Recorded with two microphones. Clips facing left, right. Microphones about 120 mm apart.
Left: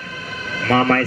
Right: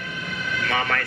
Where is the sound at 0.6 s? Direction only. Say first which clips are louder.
Left 10 dB; 40° left (ahead or behind).